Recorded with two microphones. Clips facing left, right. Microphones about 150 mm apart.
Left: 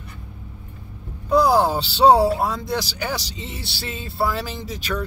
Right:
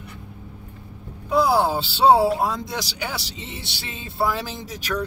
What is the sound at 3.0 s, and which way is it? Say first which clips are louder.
Speech: left 3 dB; 20° right (ahead or behind).